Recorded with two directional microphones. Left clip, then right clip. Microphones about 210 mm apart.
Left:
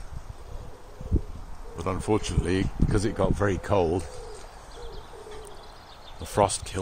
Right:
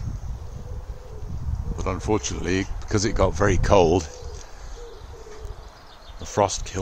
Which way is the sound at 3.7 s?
30° right (ahead or behind).